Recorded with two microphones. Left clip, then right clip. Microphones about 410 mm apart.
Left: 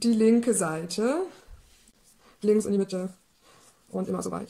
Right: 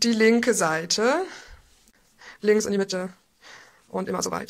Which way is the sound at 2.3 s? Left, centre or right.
Centre.